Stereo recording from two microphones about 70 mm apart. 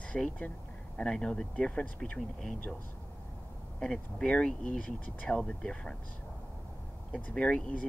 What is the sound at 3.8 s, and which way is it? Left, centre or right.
Speech, centre.